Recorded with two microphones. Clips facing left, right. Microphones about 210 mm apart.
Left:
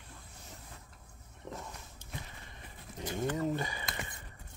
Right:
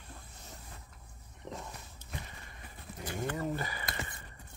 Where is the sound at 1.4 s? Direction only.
20° right (ahead or behind).